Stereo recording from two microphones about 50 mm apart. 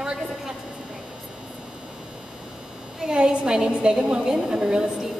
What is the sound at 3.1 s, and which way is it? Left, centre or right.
A woman's voice, centre.